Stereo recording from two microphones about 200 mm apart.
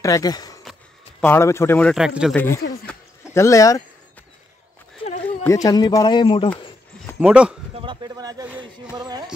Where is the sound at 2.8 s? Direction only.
15° left (ahead or behind).